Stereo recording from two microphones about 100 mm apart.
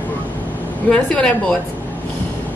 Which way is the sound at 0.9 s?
10° left (ahead or behind).